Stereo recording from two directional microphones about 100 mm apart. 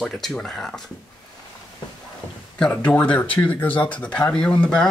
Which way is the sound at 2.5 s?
10° left (ahead or behind).